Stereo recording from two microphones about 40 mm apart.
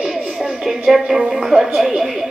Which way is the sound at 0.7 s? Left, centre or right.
Centre.